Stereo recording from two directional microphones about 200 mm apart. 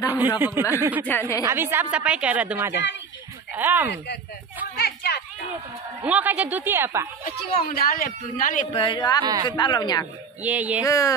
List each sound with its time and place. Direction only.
0.4 s a woman's voice: 10° right (ahead or behind)
1.0 s a woman's voice: 10° left (ahead or behind)
1.4 s a woman's voice: 10° right (ahead or behind)
4.7 s a sound: 55° left (ahead or behind)
6.0 s a woman's voice: 5° right (ahead or behind)
7.6 s a man's voice: 50° left (ahead or behind)
8.7 s speech: 25° left (ahead or behind)
9.2 s speech: 20° right (ahead or behind)
9.5 s speech: 20° left (ahead or behind)
10.4 s a woman's voice: 10° right (ahead or behind)
10.9 s a woman's voice: 15° left (ahead or behind)